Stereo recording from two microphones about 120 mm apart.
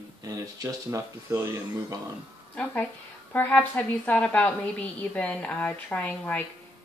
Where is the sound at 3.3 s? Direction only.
15° left (ahead or behind).